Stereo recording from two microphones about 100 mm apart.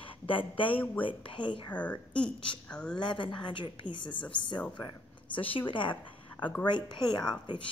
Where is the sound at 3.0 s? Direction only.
55° left (ahead or behind).